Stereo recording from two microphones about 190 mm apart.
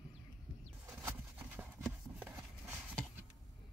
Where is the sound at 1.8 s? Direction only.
5° right (ahead or behind).